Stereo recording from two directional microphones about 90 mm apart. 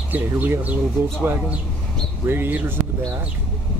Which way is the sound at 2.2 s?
25° right (ahead or behind).